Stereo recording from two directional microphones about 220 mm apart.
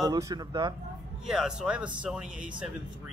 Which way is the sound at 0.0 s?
15° right (ahead or behind).